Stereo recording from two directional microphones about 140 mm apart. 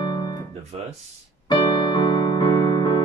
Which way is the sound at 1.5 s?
30° left (ahead or behind).